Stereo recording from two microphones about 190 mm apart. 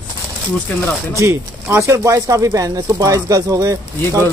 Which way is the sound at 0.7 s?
5° left (ahead or behind).